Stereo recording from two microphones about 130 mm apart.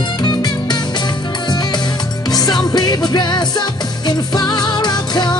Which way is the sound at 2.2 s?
30° left (ahead or behind).